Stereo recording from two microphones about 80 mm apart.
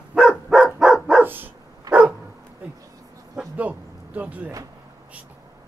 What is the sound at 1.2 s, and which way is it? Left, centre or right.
Dog, right.